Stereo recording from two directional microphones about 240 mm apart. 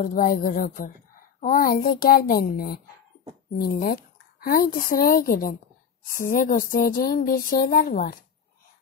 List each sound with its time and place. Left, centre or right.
0.0 s a woman's voice: left